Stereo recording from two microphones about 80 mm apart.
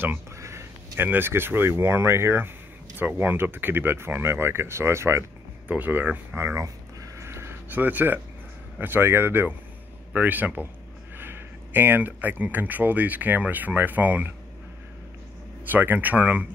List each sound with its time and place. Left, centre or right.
0.4 s a sound: right
1.0 s speech: right
5.7 s speech: right
7.2 s a sound: right
8.7 s speech: right
15.7 s speech: right